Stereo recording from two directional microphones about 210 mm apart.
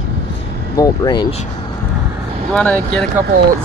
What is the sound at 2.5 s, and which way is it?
Speech, 5° left (ahead or behind).